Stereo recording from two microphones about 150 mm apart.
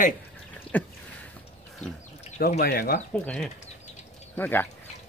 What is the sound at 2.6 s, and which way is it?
Speech, 90° left.